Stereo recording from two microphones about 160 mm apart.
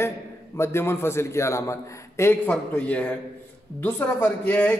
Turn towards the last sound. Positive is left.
turn(degrees=10)  # may be behind; listen again after turning